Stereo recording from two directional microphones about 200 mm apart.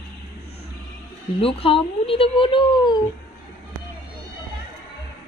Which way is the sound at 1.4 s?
30° left (ahead or behind).